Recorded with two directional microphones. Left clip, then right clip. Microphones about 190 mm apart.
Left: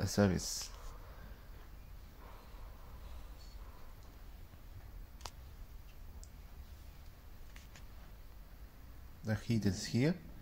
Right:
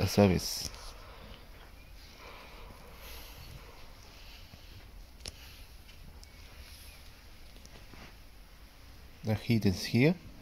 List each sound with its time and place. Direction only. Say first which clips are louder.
0.0 s speech: right 7 dB; 30° right (ahead or behind)
9.2 s speech: right 6 dB; 30° right (ahead or behind)